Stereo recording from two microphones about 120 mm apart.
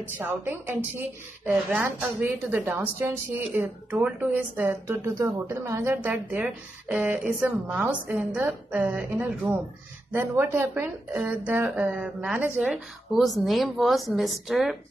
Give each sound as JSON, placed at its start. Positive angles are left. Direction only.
{"t": 0.2, "sound": "a woman's voice", "side_deg": -20}
{"t": 3.9, "sound": "a woman's voice", "side_deg": -10}
{"t": 6.0, "sound": "a woman's voice", "side_deg": -10}